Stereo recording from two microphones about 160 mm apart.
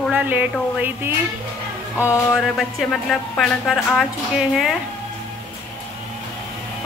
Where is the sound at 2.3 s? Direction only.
Centre (ahead or behind).